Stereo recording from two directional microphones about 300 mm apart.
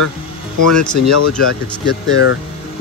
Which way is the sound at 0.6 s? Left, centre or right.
Left.